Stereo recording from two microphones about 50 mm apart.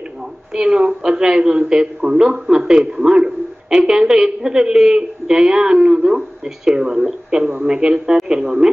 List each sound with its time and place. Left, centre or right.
0.5 s a man's voice: centre